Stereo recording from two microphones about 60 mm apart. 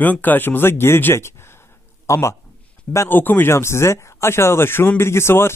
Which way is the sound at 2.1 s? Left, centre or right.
Left.